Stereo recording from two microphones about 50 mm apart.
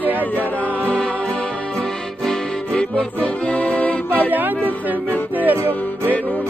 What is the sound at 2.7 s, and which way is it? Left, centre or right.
Music, left.